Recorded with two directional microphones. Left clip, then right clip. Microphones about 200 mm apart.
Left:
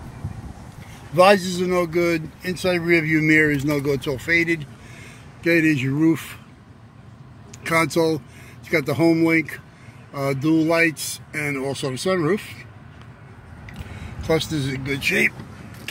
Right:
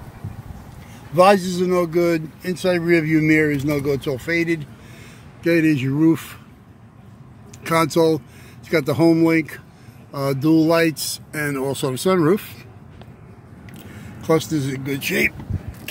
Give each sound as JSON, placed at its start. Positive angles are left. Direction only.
{"t": 1.1, "sound": "speech", "side_deg": -10}
{"t": 7.6, "sound": "speech", "side_deg": -15}
{"t": 14.2, "sound": "speech", "side_deg": -10}